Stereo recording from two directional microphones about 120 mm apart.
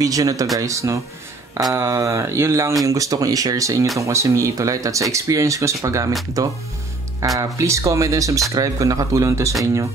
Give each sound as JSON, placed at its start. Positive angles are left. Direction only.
{"t": 0.0, "sound": "speech", "side_deg": -30}
{"t": 7.3, "sound": "speech", "side_deg": -25}